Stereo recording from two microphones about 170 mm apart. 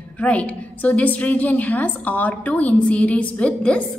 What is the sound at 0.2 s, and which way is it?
A woman's voice, 5° left (ahead or behind).